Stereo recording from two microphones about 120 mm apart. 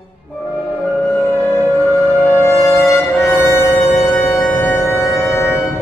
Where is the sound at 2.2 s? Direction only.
20° left (ahead or behind).